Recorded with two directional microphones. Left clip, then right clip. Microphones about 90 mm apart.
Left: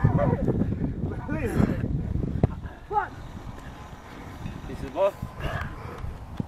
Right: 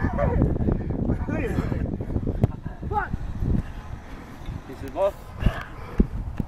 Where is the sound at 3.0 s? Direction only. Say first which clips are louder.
Left 1 dB; 20° right (ahead or behind).